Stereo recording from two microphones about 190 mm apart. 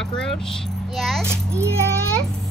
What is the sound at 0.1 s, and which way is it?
Speech, 5° left (ahead or behind).